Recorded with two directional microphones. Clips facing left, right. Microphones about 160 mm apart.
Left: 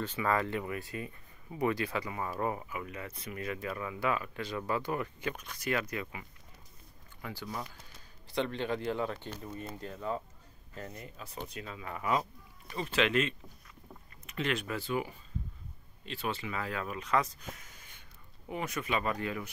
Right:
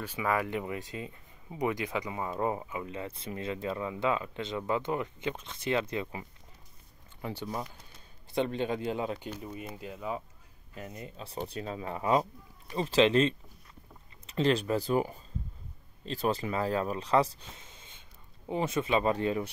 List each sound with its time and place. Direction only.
0.0 s speech: 10° right (ahead or behind); by 19.5 s 30° right (ahead or behind)